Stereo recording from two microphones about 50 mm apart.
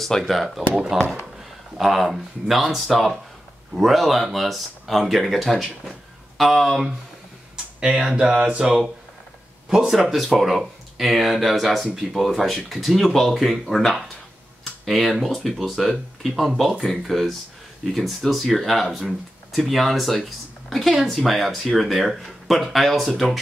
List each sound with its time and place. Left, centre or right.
0.0 s speech: centre
7.8 s speech: centre